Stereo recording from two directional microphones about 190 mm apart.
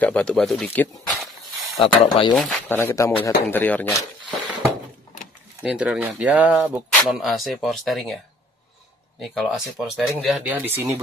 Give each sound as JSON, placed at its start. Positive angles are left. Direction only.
{"t": 0.0, "sound": "speech", "side_deg": 5}
{"t": 1.8, "sound": "speech", "side_deg": 25}
{"t": 2.3, "sound": "speech", "side_deg": 5}
{"t": 5.6, "sound": "speech", "side_deg": -5}
{"t": 9.3, "sound": "speech", "side_deg": 0}